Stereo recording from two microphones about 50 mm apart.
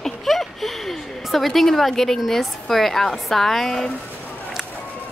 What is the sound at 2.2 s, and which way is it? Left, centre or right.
A woman's voice, centre.